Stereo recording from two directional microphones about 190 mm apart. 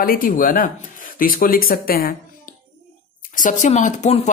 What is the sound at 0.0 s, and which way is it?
Speech, 50° left (ahead or behind).